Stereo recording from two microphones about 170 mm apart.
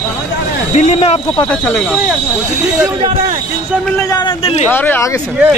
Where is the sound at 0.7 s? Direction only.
40° left (ahead or behind).